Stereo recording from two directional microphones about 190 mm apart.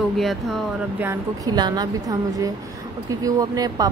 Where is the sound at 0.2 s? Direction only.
Centre (ahead or behind).